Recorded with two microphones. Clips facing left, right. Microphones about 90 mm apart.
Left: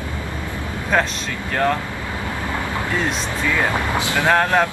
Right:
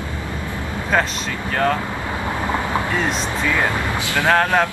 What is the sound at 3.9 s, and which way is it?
Vehicle, 20° left (ahead or behind).